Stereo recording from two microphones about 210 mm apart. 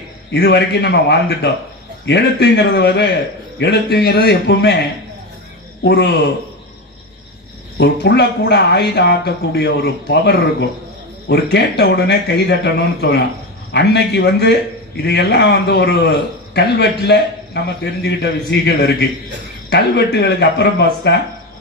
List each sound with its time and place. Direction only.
0.3 s a man's voice: 55° left (ahead or behind)
7.7 s speech: 55° left (ahead or behind)
11.5 s a man's voice: 50° left (ahead or behind)